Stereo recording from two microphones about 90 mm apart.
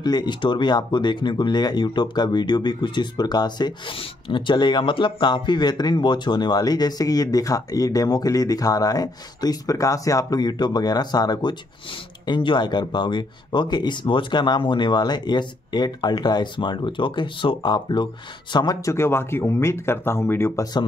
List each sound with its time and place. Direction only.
0.0 s speech: 50° left (ahead or behind)
3.9 s speech: 75° left (ahead or behind); by 11.5 s 50° left (ahead or behind)
12.3 s speech: 60° left (ahead or behind)
18.9 s speech: 30° left (ahead or behind)